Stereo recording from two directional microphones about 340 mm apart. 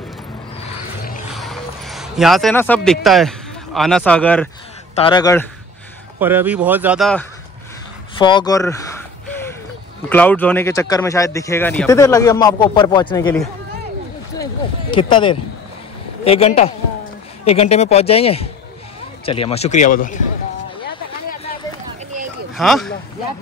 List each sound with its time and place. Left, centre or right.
1.3 s a man's voice: centre
6.1 s a man's voice: centre
8.2 s speech: centre
9.3 s a sound: centre
10.0 s speech: centre
14.3 s a sound: centre
16.3 s speech: centre
22.5 s speech: centre